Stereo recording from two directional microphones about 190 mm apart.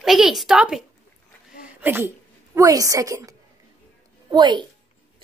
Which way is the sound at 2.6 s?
15° right (ahead or behind).